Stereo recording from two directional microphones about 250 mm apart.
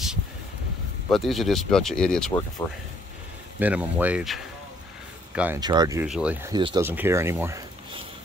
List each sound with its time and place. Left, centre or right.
1.1 s speech: centre
3.5 s speech: centre
5.6 s speech: centre
6.0 s speech: centre